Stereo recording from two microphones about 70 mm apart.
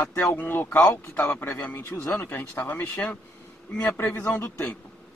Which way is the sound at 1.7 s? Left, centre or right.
Left.